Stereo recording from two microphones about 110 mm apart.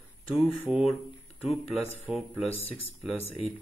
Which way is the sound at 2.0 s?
15° right (ahead or behind).